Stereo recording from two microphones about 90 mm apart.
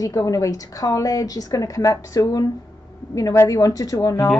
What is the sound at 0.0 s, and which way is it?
A woman's voice, 35° left (ahead or behind).